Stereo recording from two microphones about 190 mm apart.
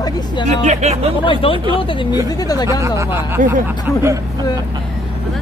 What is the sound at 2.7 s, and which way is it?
Speech, 15° right (ahead or behind).